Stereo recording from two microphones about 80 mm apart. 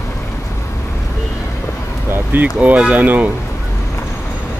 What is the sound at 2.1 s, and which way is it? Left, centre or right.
Speech, right.